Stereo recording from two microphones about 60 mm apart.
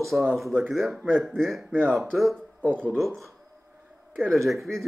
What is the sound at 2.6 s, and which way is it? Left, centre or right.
Speech, right.